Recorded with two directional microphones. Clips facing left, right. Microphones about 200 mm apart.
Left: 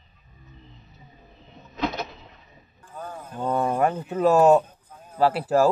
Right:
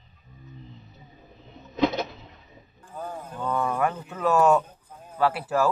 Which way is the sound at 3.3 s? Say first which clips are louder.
Left 3 dB; 30° left (ahead or behind).